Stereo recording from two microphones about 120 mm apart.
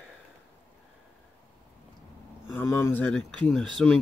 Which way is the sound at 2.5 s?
20° left (ahead or behind).